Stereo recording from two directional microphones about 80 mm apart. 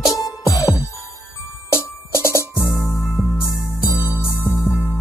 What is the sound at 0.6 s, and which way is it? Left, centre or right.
Music, left.